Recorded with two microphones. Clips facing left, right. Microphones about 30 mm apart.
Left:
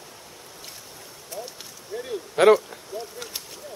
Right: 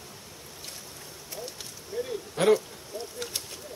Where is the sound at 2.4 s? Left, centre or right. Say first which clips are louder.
Left 7 dB; left.